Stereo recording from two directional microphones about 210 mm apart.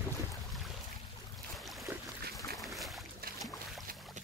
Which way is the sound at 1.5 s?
Centre (ahead or behind).